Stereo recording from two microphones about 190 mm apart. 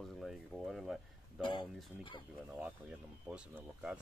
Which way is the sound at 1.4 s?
25° left (ahead or behind).